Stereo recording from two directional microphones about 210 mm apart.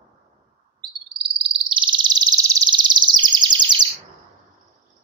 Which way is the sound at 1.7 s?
20° right (ahead or behind).